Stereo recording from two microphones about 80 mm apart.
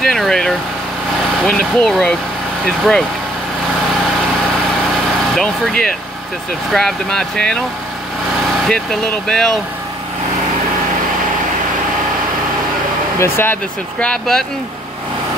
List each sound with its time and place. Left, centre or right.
0.0 s vehicle: centre
1.4 s speech: centre
5.3 s speech: centre
9.3 s speech: centre
13.2 s speech: left
13.9 s speech: centre